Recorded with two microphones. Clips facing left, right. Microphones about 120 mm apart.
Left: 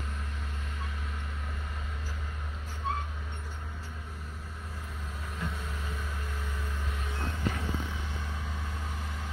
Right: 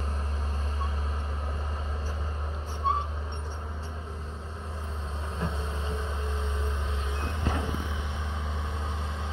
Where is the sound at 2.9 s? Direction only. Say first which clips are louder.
Right 6 dB; 25° right (ahead or behind).